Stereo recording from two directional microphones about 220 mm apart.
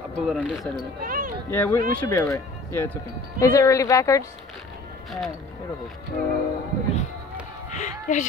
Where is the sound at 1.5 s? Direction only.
10° left (ahead or behind).